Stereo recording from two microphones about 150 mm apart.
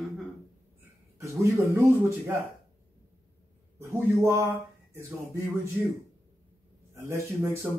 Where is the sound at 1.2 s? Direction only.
20° right (ahead or behind).